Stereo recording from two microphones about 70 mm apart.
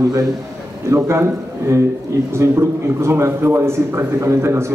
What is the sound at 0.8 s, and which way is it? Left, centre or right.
Speech, right.